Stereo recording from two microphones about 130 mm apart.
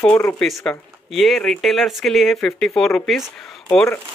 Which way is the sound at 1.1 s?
Centre (ahead or behind).